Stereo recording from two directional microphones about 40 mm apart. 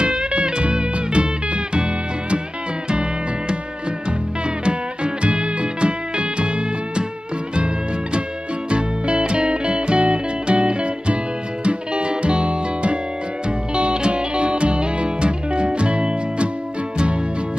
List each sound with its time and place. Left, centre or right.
0.0 s music: right
4.6 s music: right
7.5 s music: right